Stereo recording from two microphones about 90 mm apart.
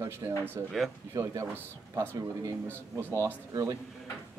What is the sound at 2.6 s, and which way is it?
Speech, 25° right (ahead or behind).